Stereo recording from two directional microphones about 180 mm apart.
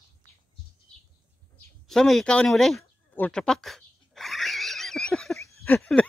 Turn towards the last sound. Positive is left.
turn(degrees=10)  # may be behind; listen again after turning